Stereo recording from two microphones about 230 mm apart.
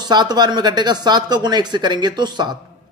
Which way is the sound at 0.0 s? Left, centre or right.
Centre.